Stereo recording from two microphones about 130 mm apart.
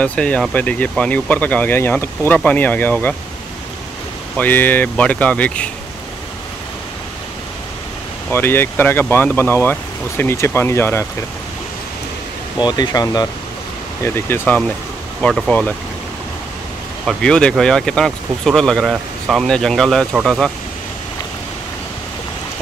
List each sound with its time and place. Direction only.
0.0 s speech: 10° left (ahead or behind)
4.4 s speech: 15° left (ahead or behind)
8.3 s speech: 15° left (ahead or behind)
12.5 s speech: 35° left (ahead or behind)
14.0 s speech: 15° left (ahead or behind)
15.2 s speech: 5° left (ahead or behind)
17.0 s speech: centre (ahead or behind)